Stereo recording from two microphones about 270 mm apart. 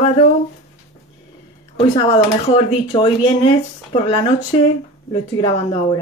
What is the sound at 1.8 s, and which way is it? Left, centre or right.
Speech, centre.